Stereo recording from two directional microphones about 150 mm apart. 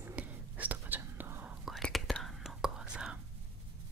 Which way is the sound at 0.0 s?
10° right (ahead or behind).